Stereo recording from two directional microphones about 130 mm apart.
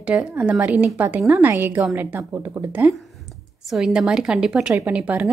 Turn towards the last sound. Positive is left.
turn(degrees=-10)  # may be behind; listen again after turning